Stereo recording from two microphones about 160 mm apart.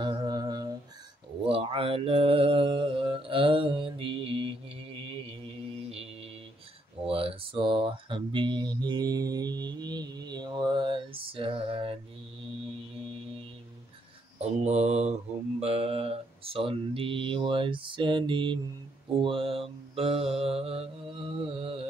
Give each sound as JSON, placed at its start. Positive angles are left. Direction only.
{"t": 0.0, "sound": "humming", "side_deg": -25}
{"t": 1.5, "sound": "mantra", "side_deg": -35}
{"t": 7.1, "sound": "mantra", "side_deg": -35}
{"t": 14.4, "sound": "mantra", "side_deg": -45}